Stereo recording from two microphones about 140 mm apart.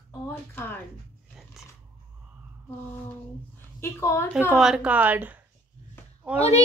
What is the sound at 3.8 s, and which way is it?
Speech, 20° left (ahead or behind).